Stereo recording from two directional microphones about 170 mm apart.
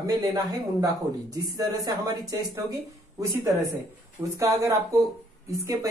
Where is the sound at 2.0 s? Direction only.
20° right (ahead or behind).